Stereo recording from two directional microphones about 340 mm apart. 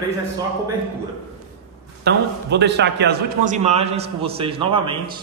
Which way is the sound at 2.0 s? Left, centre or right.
Right.